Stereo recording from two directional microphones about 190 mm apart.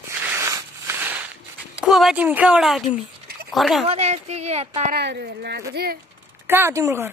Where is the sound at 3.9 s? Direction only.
35° right (ahead or behind).